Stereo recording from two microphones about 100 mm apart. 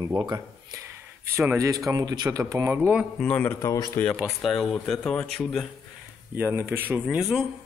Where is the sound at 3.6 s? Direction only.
35° left (ahead or behind).